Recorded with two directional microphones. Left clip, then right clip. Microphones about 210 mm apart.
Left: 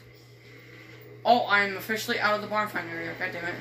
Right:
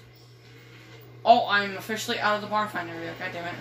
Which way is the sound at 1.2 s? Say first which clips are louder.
Right 2 dB; 20° right (ahead or behind).